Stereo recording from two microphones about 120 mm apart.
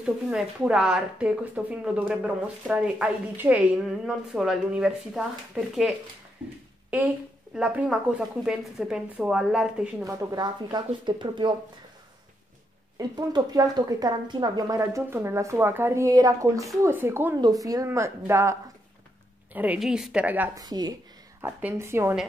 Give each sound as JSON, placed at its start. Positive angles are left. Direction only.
{"t": 0.0, "sound": "speech", "side_deg": -5}
{"t": 7.5, "sound": "speech", "side_deg": -10}
{"t": 10.0, "sound": "a woman's voice", "side_deg": -30}
{"t": 12.9, "sound": "a woman's voice", "side_deg": -35}
{"t": 14.8, "sound": "a woman's voice", "side_deg": -25}
{"t": 17.4, "sound": "a woman's voice", "side_deg": -30}
{"t": 19.5, "sound": "speech", "side_deg": -10}
{"t": 20.5, "sound": "a woman's voice", "side_deg": -35}
{"t": 21.5, "sound": "a woman's voice", "side_deg": -20}